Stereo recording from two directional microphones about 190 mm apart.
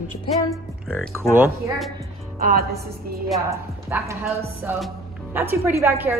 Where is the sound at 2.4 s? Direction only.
50° right (ahead or behind).